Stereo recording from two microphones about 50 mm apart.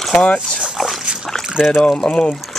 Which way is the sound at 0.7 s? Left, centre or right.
Centre.